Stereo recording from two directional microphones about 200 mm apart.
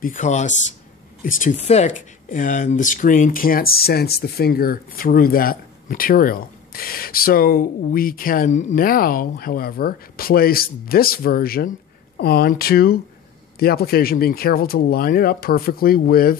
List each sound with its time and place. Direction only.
0.0 s speech: 40° left (ahead or behind)